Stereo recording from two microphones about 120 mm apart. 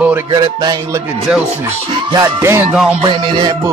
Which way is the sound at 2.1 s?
20° right (ahead or behind).